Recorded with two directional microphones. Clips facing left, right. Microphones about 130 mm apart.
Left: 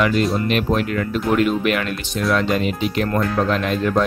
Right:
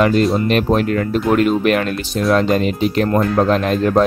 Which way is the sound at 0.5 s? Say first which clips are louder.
Right 4 dB; 40° right (ahead or behind).